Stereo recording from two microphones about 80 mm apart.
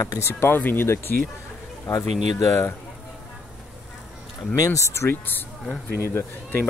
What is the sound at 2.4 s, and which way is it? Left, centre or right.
Speech, left.